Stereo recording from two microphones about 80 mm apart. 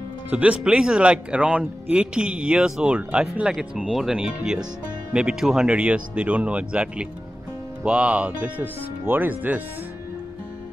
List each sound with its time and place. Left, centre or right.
0.3 s speech: centre